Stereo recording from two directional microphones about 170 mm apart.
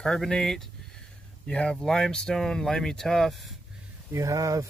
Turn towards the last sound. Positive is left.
turn(degrees=-20)  # may be behind; listen again after turning